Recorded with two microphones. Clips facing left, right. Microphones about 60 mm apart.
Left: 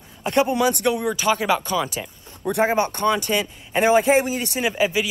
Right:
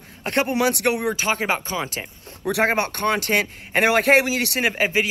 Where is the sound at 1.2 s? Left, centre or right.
Right.